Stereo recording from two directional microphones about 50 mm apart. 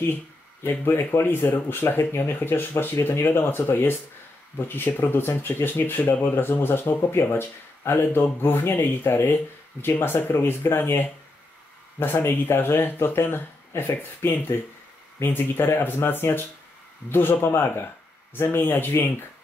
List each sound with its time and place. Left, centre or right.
0.7 s speech: left
17.5 s speech: left